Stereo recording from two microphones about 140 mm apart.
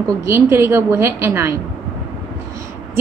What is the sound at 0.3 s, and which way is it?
A woman's voice, 20° right (ahead or behind).